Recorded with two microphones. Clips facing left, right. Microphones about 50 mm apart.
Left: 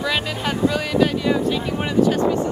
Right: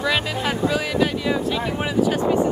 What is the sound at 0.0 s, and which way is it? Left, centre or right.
Speech, centre.